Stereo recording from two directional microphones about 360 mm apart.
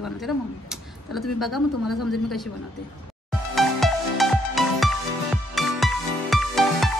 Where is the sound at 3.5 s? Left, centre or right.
Centre.